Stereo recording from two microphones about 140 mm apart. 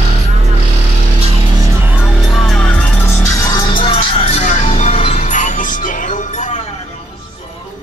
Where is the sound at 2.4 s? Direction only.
5° left (ahead or behind).